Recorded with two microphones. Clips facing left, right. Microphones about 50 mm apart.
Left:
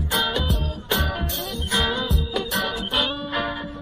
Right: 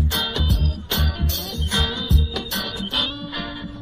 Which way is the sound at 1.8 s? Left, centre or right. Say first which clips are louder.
Left 1 dB; centre.